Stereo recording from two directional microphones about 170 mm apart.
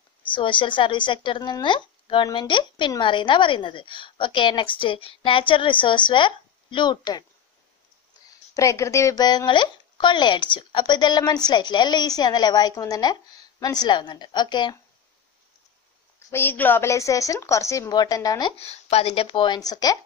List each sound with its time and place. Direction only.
0.3 s speech: 30° left (ahead or behind)
8.5 s speech: 15° left (ahead or behind)
16.3 s a woman's voice: 15° left (ahead or behind)
18.6 s speech: 40° left (ahead or behind); by 20.0 s 20° left (ahead or behind)